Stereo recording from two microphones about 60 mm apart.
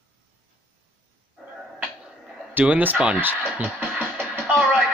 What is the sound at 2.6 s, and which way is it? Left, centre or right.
Speech, right.